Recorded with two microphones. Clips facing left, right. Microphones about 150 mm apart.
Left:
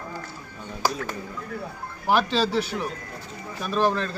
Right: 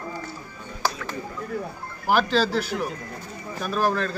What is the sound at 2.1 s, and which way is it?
Speech, centre (ahead or behind).